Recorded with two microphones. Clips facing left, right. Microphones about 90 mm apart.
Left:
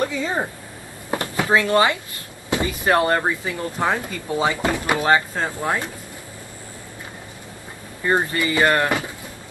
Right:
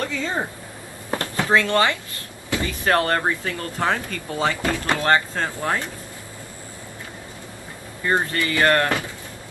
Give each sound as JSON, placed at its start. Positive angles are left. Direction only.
{"t": 0.0, "sound": "speech", "side_deg": 15}
{"t": 1.1, "sound": "drawer open or close", "side_deg": 15}
{"t": 2.5, "sound": "speech", "side_deg": 15}
{"t": 8.0, "sound": "speech", "side_deg": 15}